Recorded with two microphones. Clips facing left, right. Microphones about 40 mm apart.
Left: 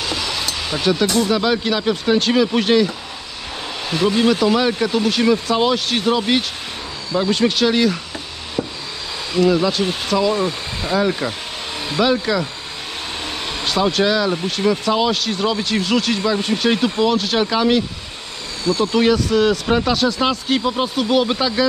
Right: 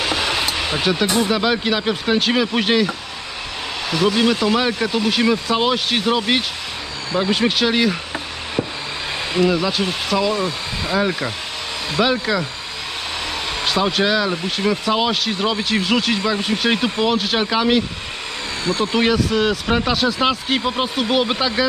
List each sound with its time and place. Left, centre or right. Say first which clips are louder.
0.0 s vehicle: right 3 dB; right
0.6 s a sound: right 2 dB; right
0.8 s speech: left 2 dB; centre
4.3 s speech: left 2 dB; centre
8.6 s a sound: even; centre
9.7 s speech: left 1 dB; centre
13.7 s speech: left 1 dB; centre
18.6 s speech: left 3 dB; right
18.9 s speech: left 2 dB; centre